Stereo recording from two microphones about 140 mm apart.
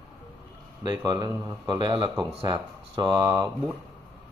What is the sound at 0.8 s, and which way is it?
A man's voice, 30° right (ahead or behind).